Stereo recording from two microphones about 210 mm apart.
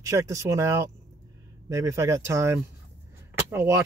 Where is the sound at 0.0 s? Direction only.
15° right (ahead or behind).